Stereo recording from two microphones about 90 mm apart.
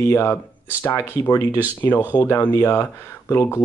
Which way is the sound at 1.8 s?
20° left (ahead or behind).